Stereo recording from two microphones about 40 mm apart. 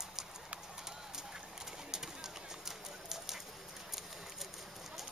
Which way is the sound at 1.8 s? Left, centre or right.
Centre.